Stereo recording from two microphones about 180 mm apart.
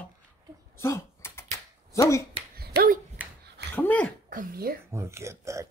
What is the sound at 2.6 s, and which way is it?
Dog, 55° right (ahead or behind).